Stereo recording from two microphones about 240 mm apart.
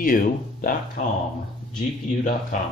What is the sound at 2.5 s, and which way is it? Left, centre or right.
Speech, left.